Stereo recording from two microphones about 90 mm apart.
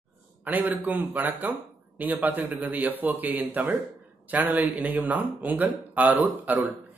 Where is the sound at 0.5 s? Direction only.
20° right (ahead or behind).